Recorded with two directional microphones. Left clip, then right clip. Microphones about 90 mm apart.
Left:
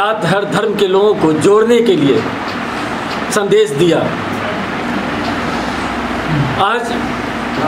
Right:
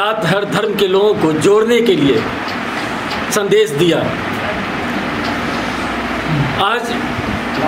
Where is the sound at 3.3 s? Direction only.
5° left (ahead or behind).